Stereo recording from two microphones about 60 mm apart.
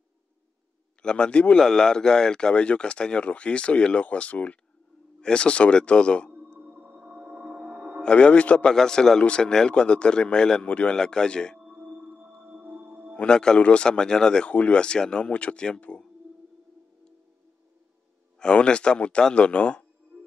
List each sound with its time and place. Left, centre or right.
1.0 s speech: centre
6.6 s whale vocalization: right
7.0 s music: centre
8.0 s a man's voice: centre
8.7 s speech: centre
12.4 s music: right
13.1 s speech: centre
18.4 s a man's voice: centre